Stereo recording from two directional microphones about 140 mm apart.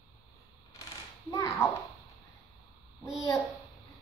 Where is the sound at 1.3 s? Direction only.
20° left (ahead or behind).